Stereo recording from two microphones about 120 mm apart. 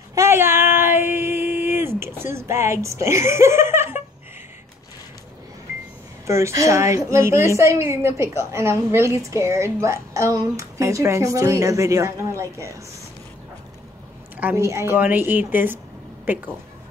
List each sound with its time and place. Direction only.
0.1 s female singing: 20° right (ahead or behind)
6.2 s a woman's voice: 25° right (ahead or behind)
14.3 s a woman's voice: 20° right (ahead or behind)